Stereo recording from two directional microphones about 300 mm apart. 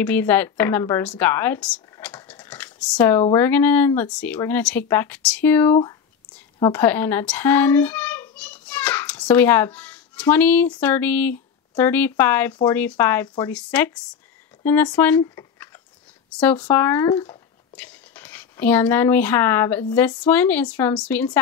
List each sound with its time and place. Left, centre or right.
0.0 s a child's voice: centre
17.7 s speech: centre